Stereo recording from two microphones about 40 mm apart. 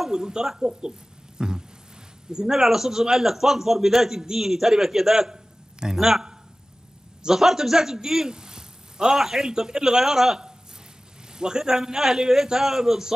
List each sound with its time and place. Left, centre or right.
0.1 s a man's voice: centre
1.4 s a sound: right
2.3 s a man's voice: centre
11.3 s a man's voice: centre